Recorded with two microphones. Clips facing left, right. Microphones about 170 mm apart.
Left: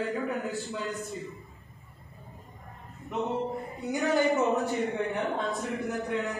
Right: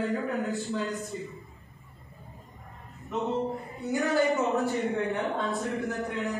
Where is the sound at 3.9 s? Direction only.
20° left (ahead or behind).